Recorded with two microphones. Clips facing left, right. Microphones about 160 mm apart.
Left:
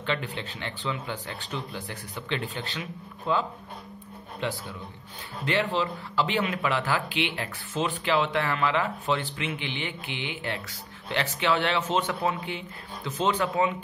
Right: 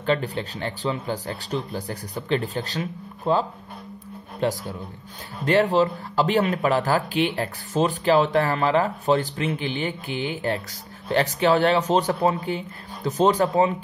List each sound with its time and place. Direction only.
0.0 s speech: 40° right (ahead or behind)